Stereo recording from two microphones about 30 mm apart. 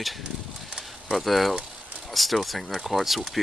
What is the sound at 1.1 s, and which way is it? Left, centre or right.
Speech, centre.